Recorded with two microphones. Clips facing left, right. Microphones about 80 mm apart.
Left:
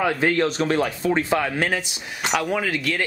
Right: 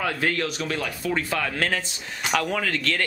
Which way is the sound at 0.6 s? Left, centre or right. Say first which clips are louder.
Left 7 dB; left.